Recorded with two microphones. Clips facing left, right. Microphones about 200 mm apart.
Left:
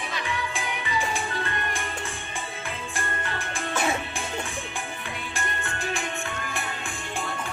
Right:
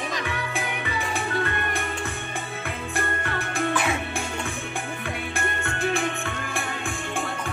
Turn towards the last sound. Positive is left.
turn(degrees=-55)  # may be behind; listen again after turning